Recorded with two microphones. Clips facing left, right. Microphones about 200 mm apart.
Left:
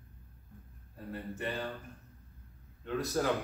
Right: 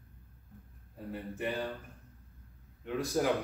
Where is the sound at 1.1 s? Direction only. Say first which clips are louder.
Right 2 dB; 10° right (ahead or behind).